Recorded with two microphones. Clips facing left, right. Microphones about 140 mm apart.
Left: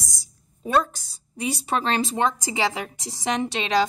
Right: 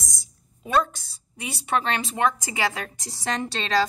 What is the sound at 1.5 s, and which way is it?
A woman's voice, 35° left (ahead or behind).